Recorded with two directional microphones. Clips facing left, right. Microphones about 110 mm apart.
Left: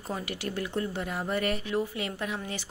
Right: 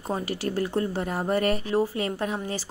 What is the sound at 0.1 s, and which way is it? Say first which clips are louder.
A woman's voice: right 6 dB; 35° right (ahead or behind).